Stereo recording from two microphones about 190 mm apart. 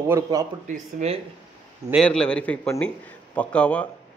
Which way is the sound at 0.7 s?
40° right (ahead or behind).